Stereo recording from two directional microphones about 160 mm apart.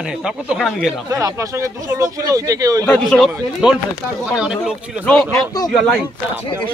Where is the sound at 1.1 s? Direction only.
20° right (ahead or behind).